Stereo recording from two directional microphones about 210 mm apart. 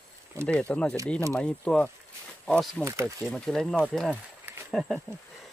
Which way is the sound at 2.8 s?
15° right (ahead or behind).